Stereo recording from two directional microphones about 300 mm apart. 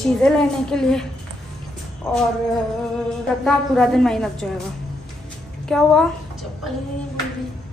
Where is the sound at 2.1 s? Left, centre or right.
Centre.